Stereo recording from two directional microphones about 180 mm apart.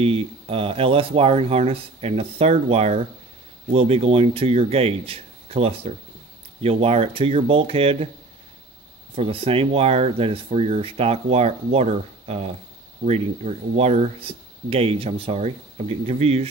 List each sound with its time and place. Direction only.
0.0 s speech: 30° right (ahead or behind)
9.1 s speech: 30° right (ahead or behind)